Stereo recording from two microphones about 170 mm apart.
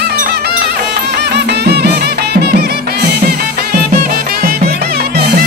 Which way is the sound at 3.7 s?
60° right (ahead or behind).